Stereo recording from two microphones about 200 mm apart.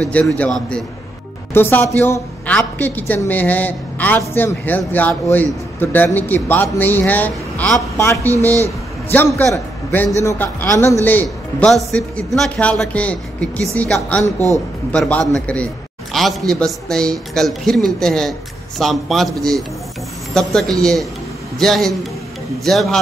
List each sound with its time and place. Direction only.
0.1 s a woman's voice: 5° left (ahead or behind)
2.4 s a sound: 10° left (ahead or behind)
3.1 s a woman's voice: 10° left (ahead or behind)
8.3 s speech: 15° right (ahead or behind)
9.1 s a woman's voice: 10° left (ahead or behind)